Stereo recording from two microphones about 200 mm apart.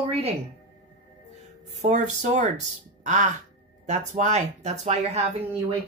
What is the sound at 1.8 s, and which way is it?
Speech, 35° right (ahead or behind).